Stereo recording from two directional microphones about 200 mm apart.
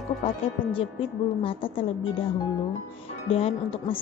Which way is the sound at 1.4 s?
25° left (ahead or behind).